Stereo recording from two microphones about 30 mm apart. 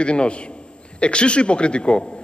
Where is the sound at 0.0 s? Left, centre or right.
Left.